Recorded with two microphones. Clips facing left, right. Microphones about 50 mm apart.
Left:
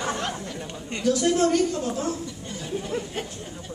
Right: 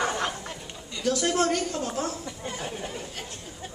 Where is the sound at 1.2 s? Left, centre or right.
Right.